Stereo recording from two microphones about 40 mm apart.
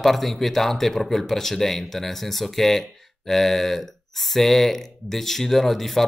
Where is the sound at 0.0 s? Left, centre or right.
Centre.